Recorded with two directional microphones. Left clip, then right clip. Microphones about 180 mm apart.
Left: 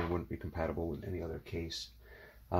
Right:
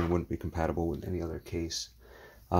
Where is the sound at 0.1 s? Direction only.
55° right (ahead or behind).